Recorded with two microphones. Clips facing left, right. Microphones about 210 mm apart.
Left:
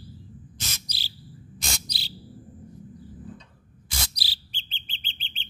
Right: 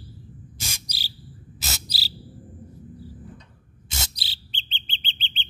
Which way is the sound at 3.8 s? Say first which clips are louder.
Right 1 dB; 25° right (ahead or behind).